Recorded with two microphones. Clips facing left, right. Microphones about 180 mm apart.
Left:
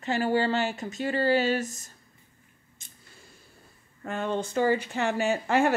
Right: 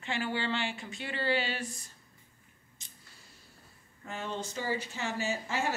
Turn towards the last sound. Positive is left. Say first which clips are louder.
# left 9 dB
turn(degrees=60)  # may be behind; listen again after turning